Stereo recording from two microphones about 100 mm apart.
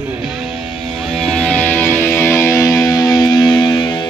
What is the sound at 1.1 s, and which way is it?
Music, 5° left (ahead or behind).